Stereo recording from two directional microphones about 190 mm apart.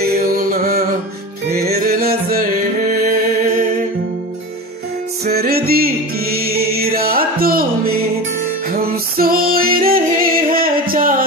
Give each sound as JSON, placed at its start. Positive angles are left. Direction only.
{"t": 0.0, "sound": "music", "side_deg": -50}
{"t": 5.2, "sound": "music", "side_deg": -55}
{"t": 8.6, "sound": "music", "side_deg": -50}